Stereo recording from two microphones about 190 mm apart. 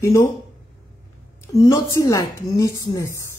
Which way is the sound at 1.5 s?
15° left (ahead or behind).